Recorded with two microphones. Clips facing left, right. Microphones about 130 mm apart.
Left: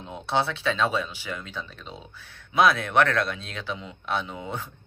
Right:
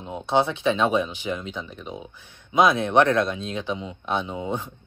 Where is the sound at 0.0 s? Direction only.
20° right (ahead or behind).